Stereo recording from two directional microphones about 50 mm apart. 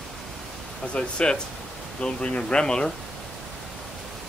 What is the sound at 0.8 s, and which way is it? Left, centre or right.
Speech, left.